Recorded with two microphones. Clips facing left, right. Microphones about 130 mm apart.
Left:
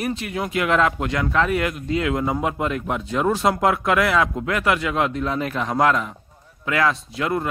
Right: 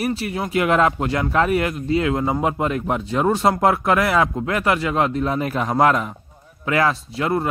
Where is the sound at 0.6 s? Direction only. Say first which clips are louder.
Right 2 dB; 40° right (ahead or behind).